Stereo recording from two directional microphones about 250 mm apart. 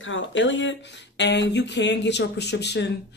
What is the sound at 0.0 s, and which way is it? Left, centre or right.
Speech, left.